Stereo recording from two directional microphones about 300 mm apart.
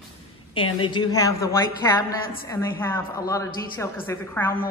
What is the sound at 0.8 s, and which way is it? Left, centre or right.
A woman's voice, centre.